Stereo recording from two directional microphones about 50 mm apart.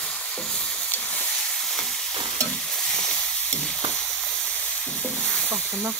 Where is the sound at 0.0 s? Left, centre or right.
Left.